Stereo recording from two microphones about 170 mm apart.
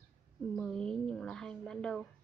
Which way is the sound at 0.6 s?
5° left (ahead or behind).